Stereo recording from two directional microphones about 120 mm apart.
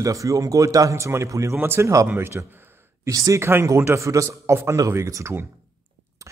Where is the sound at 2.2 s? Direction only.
20° right (ahead or behind).